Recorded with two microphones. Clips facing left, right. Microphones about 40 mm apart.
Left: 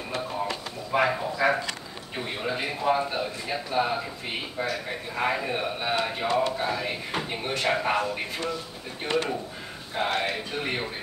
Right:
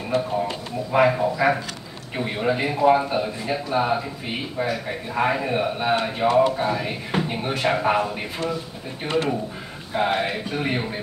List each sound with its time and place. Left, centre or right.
0.9 s speech: centre
6.2 s speech: right
6.5 s speech: centre